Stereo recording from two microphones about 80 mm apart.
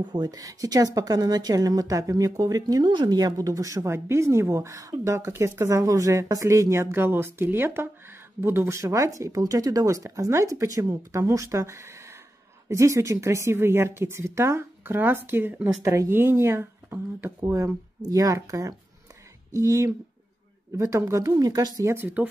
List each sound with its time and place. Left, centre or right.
0.0 s a woman's voice: right
18.0 s a woman's voice: right
21.4 s a woman's voice: right
21.8 s speech: right